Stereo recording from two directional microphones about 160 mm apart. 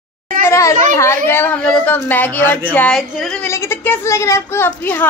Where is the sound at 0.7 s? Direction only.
50° right (ahead or behind).